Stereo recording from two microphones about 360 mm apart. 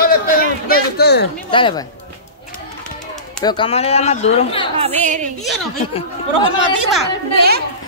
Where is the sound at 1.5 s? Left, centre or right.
Centre.